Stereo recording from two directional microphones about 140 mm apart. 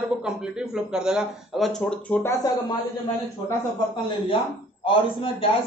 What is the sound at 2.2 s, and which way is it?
Speech, 25° left (ahead or behind).